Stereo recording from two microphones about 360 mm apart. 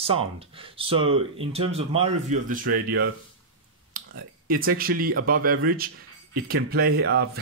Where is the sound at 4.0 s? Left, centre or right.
Right.